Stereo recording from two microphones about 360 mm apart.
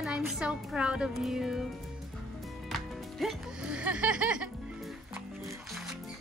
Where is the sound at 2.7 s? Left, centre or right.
Centre.